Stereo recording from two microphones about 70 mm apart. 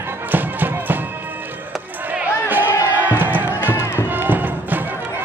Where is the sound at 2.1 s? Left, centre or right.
Right.